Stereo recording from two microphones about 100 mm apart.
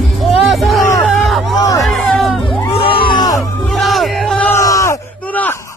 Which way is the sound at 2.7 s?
65° left (ahead or behind).